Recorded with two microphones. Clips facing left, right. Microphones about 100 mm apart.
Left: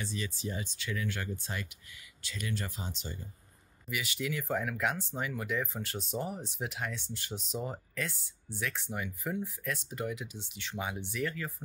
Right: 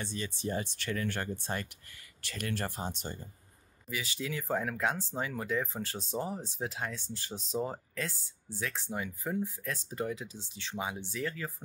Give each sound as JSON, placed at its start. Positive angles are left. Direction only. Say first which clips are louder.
{"t": 0.4, "sound": "speech", "louder": "right 4 dB", "side_deg": -50}
{"t": 3.9, "sound": "speech", "louder": "left 1 dB", "side_deg": -30}